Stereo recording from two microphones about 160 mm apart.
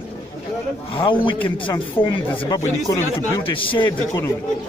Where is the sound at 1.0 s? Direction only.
30° left (ahead or behind).